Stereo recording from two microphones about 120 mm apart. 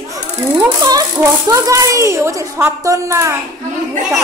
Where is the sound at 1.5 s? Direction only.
30° right (ahead or behind).